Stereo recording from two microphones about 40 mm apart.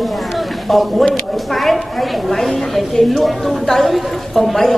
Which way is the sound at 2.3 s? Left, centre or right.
Centre.